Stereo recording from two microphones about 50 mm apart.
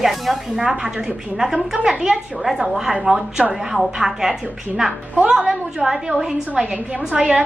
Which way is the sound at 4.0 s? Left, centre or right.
Centre.